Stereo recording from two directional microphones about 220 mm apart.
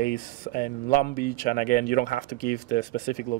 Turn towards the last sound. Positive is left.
turn(degrees=40)  # may be behind; listen again after turning